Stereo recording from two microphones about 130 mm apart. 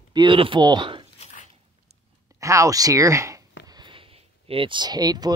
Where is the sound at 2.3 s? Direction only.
25° right (ahead or behind).